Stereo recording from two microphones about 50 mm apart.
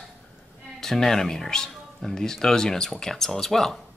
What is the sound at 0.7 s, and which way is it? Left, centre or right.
Speech, centre.